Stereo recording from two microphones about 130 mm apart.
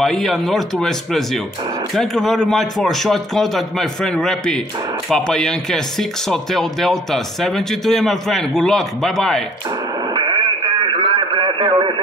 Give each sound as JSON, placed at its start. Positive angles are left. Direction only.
{"t": 0.0, "sound": "speech", "side_deg": 0}
{"t": 10.1, "sound": "radio", "side_deg": -35}